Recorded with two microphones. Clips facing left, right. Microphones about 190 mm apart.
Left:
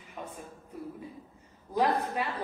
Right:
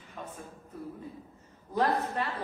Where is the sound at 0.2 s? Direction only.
10° left (ahead or behind).